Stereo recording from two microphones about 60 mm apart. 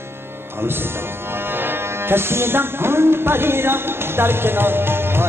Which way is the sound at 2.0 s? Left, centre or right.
Right.